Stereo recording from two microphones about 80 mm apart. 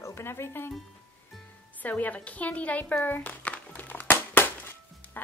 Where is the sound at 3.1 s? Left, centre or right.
Left.